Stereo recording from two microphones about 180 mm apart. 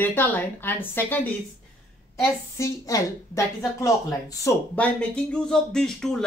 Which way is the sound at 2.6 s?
15° left (ahead or behind).